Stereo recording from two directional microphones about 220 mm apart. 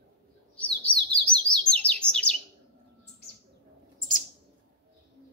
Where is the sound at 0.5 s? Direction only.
5° left (ahead or behind).